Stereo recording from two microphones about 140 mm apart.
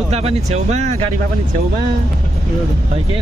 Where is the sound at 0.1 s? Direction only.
50° right (ahead or behind).